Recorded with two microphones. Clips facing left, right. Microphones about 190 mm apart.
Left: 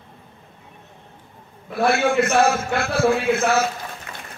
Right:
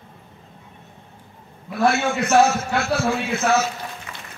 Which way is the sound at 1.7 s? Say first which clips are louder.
Left 2 dB; 55° left (ahead or behind).